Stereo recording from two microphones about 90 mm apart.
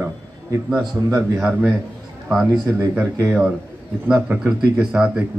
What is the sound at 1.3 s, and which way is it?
Speech, 15° right (ahead or behind).